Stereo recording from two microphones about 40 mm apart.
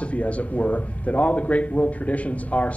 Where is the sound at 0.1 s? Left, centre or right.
Left.